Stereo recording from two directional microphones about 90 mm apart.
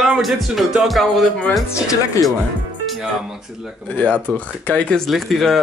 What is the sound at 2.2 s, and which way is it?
Speech, 35° left (ahead or behind).